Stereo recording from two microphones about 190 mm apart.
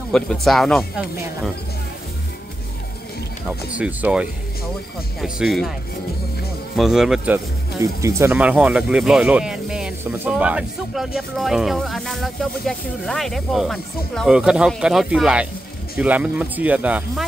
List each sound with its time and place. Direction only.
0.1 s speech: centre (ahead or behind)
3.4 s speech: 5° right (ahead or behind)
6.8 s speech: centre (ahead or behind)
7.8 s speech: 15° right (ahead or behind)